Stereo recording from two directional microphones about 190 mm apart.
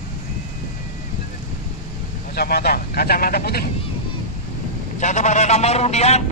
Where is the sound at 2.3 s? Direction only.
55° left (ahead or behind).